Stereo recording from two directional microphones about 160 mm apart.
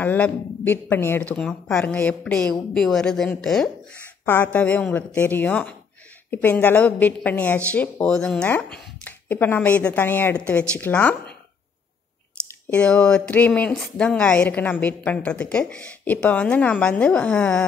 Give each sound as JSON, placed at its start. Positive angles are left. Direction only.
{"t": 0.0, "sound": "a woman's voice", "side_deg": 10}
{"t": 12.7, "sound": "a woman's voice", "side_deg": 5}